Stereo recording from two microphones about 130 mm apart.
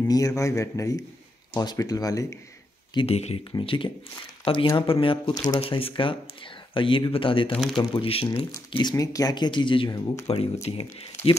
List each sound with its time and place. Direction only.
0.1 s speech: 25° left (ahead or behind)
3.1 s speech: 55° left (ahead or behind)
3.5 s speech: 40° left (ahead or behind)
5.6 s speech: 45° left (ahead or behind)
8.5 s speech: 30° left (ahead or behind)
10.2 s speech: 50° left (ahead or behind)